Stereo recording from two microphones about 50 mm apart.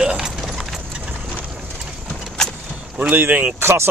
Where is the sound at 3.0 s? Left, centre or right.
Right.